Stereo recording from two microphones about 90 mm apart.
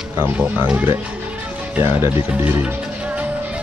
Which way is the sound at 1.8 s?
30° right (ahead or behind).